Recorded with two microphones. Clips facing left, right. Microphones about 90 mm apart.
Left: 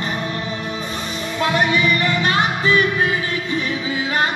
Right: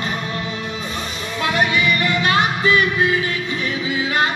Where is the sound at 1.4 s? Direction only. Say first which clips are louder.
Left 1 dB; 30° left (ahead or behind).